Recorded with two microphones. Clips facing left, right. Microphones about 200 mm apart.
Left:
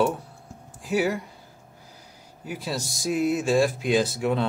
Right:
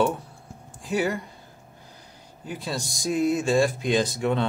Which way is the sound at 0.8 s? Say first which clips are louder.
Left 1 dB; 5° left (ahead or behind).